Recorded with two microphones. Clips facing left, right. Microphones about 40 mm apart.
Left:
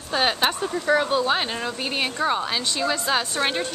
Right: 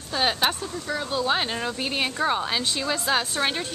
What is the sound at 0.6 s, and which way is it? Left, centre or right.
Speech, left.